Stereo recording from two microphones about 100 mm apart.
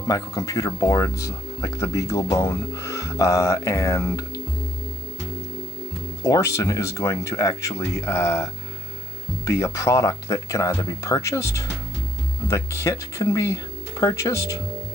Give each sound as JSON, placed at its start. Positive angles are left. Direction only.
{"t": 0.0, "sound": "speech", "side_deg": 30}
{"t": 6.2, "sound": "speech", "side_deg": 30}
{"t": 9.6, "sound": "speech", "side_deg": 30}